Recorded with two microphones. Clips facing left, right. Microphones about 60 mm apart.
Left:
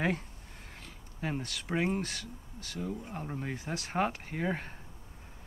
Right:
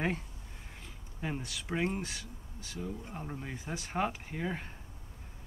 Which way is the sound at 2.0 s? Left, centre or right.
Centre.